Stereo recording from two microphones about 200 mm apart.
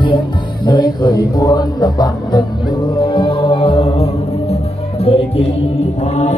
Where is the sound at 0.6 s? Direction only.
20° left (ahead or behind).